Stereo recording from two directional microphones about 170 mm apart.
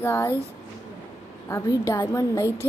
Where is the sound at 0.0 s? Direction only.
15° left (ahead or behind).